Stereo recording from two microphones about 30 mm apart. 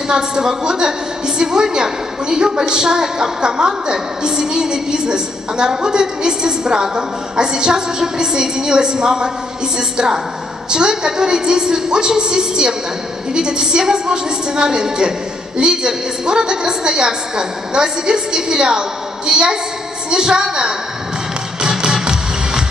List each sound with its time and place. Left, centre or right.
0.1 s a woman's voice: right
21.6 s music: right